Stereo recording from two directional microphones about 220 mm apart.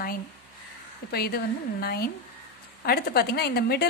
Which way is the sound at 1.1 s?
45° left (ahead or behind).